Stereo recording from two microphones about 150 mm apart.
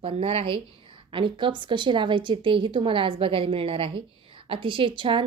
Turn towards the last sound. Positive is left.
turn(degrees=-35)  # may be behind; listen again after turning